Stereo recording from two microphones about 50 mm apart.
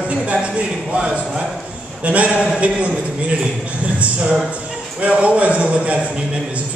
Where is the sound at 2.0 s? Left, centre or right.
Right.